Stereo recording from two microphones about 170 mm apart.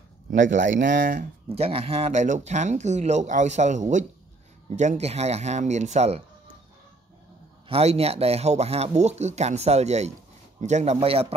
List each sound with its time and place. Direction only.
0.3 s speech: 45° right (ahead or behind)
1.5 s speech: 35° right (ahead or behind)
7.6 s speech: 35° right (ahead or behind)